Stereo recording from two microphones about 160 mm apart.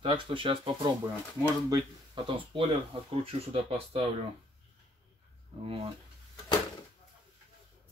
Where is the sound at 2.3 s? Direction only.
35° right (ahead or behind).